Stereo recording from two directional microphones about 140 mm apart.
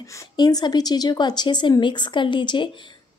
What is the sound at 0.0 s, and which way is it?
A woman's voice, 20° left (ahead or behind).